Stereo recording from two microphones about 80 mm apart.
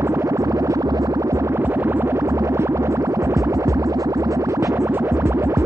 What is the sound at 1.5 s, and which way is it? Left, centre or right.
Music, right.